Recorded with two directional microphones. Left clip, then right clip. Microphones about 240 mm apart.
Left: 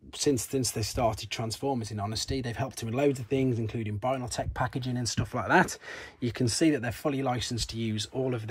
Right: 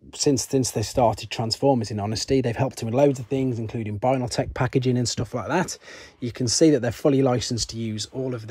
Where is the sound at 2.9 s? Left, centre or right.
Centre.